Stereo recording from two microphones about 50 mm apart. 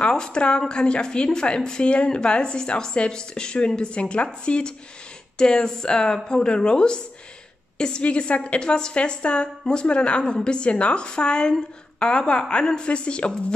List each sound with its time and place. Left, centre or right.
0.0 s a woman's voice: centre